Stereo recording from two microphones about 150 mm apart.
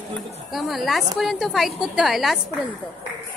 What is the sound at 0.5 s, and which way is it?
A woman's voice, centre (ahead or behind).